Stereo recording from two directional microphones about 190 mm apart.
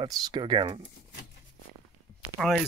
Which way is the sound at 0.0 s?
20° right (ahead or behind).